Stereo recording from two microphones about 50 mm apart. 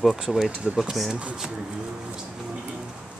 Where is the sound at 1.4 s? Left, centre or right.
Centre.